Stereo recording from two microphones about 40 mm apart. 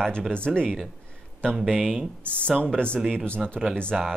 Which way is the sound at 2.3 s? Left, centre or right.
Left.